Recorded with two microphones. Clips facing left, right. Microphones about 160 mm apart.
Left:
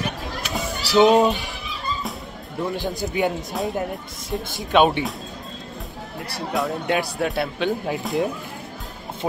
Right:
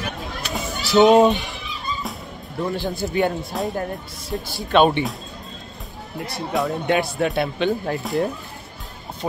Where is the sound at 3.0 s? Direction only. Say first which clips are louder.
Right 2 dB; 5° left (ahead or behind).